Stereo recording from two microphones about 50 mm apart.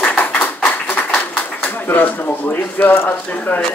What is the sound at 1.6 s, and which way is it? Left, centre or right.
Speech, left.